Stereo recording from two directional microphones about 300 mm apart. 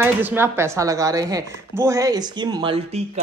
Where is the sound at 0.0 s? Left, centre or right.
Centre.